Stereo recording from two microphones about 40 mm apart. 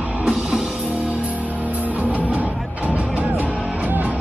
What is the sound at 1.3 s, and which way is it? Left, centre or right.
Music, right.